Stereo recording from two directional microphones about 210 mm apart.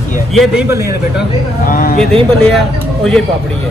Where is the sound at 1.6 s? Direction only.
40° left (ahead or behind).